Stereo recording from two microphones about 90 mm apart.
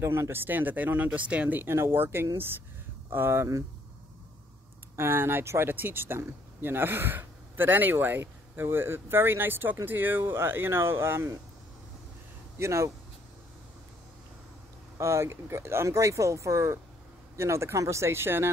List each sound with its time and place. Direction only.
0.0 s speech: 30° right (ahead or behind)
4.9 s speech: 25° right (ahead or behind)
12.5 s speech: 30° right (ahead or behind)
15.0 s speech: 30° right (ahead or behind)